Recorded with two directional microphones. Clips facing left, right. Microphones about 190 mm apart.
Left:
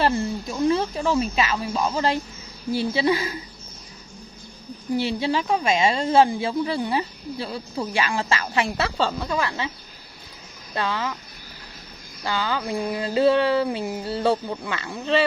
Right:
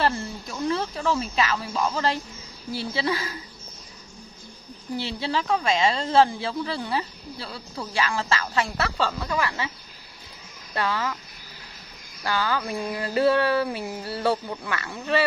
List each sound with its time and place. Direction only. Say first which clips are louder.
0.0 s speech: left 4 dB; 20° left (ahead or behind)
4.9 s speech: left 5 dB; 15° left (ahead or behind)
10.7 s speech: even; 20° left (ahead or behind)
12.2 s speech: even; 20° left (ahead or behind)